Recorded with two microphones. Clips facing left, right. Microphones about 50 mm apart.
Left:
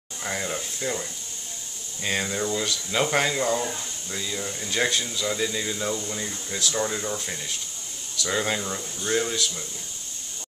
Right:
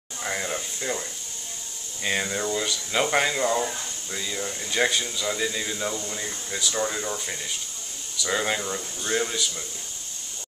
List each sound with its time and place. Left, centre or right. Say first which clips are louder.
0.2 s speech: right 1 dB; centre
2.0 s speech: even; centre